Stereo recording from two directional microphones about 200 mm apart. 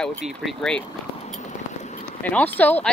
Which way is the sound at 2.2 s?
10° left (ahead or behind).